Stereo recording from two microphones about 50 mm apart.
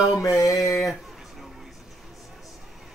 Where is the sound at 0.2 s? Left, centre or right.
Left.